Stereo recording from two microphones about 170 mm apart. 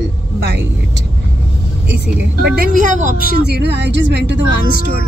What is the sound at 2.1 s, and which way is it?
Speech, 80° right.